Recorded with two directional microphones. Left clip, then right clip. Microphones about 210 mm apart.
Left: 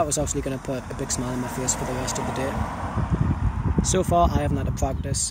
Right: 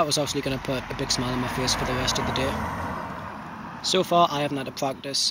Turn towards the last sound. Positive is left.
turn(degrees=5)  # may be behind; listen again after turning